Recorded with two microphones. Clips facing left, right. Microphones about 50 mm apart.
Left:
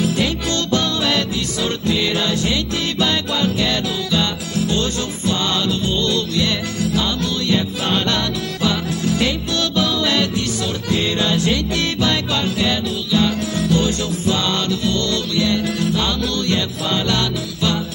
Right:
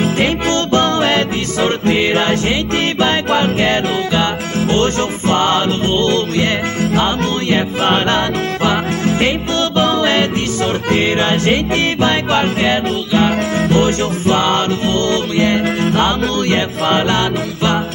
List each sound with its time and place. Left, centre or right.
0.0 s music: right